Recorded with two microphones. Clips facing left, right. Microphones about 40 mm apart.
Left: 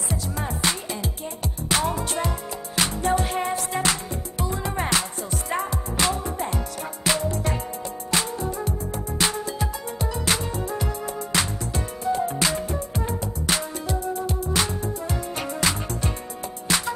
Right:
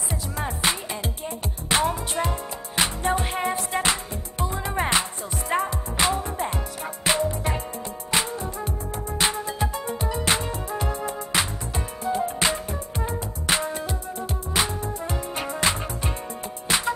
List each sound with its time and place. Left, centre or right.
0.1 s music: centre